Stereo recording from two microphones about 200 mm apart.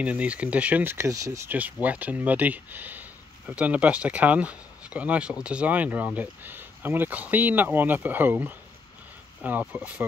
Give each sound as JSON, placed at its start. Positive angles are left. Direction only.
{"t": 0.0, "sound": "speech", "side_deg": -5}